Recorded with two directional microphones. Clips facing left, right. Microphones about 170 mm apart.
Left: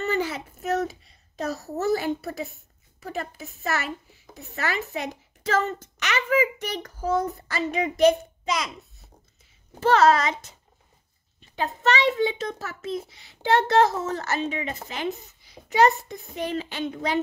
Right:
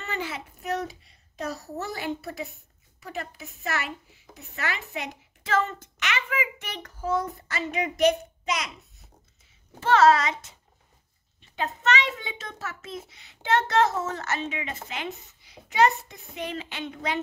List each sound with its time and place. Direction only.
0.0 s a sound: 40° left (ahead or behind)
1.5 s speech: 40° left (ahead or behind)
9.8 s speech: 40° left (ahead or behind)
11.5 s speech: 35° left (ahead or behind)